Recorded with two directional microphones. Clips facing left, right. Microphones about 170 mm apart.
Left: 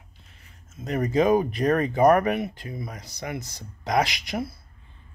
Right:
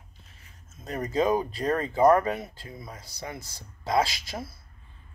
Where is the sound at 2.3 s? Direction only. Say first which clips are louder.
Left 7 dB; 20° left (ahead or behind).